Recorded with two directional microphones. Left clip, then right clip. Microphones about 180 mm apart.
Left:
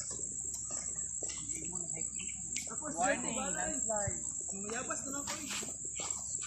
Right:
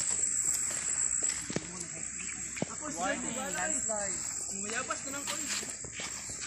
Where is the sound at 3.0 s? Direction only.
50° right (ahead or behind).